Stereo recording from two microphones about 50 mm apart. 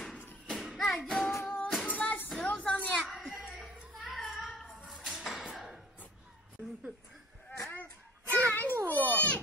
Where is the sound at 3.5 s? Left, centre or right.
Centre.